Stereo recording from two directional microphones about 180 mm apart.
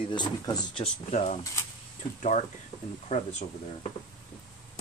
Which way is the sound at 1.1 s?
40° left (ahead or behind).